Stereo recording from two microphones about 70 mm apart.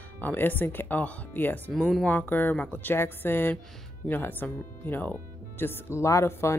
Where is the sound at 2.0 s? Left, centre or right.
Left.